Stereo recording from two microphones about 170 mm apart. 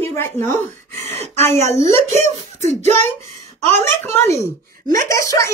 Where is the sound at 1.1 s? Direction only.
40° right (ahead or behind).